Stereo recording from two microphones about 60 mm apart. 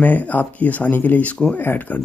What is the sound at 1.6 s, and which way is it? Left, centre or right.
Speech, left.